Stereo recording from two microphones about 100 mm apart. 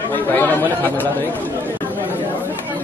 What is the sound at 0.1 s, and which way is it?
Speech, 20° left (ahead or behind).